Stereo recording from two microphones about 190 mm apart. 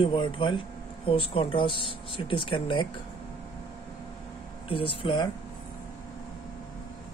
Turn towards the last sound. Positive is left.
turn(degrees=25)  # may be behind; listen again after turning